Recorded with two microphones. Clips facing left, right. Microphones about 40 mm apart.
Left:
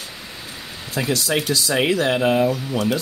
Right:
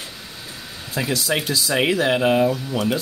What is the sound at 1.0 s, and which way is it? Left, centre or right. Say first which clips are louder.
Speech: left 1 dB; centre.